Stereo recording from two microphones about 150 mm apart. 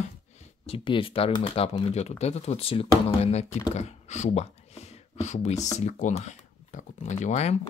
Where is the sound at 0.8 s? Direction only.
35° left (ahead or behind).